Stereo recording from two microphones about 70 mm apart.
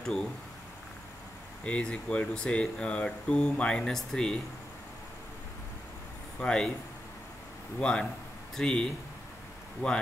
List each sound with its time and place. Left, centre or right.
0.0 s speech: centre
1.6 s speech: centre
6.4 s speech: centre
7.8 s speech: centre